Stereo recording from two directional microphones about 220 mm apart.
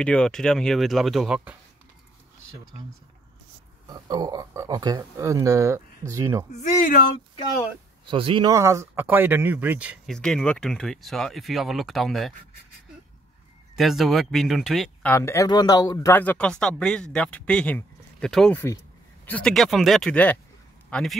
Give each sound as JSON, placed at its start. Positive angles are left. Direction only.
{"t": 0.0, "sound": "speech", "side_deg": 5}
{"t": 3.8, "sound": "speech", "side_deg": -20}
{"t": 6.5, "sound": "speech", "side_deg": 35}
{"t": 8.1, "sound": "speech", "side_deg": -25}
{"t": 13.7, "sound": "speech", "side_deg": 0}
{"t": 15.1, "sound": "speech", "side_deg": 15}